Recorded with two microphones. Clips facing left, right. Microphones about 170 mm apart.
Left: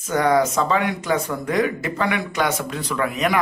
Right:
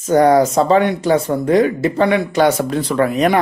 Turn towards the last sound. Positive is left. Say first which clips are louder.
# right 7 dB
turn(degrees=-35)  # may be behind; listen again after turning